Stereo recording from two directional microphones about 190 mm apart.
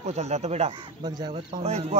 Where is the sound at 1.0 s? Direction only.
20° right (ahead or behind).